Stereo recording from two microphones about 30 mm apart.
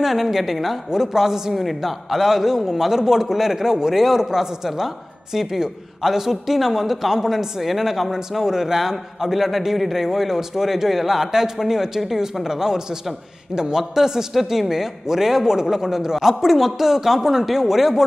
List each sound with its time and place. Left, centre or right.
0.0 s a woman's voice: centre
1.0 s a woman's voice: centre
1.5 s a woman's voice: centre
16.3 s a woman's voice: centre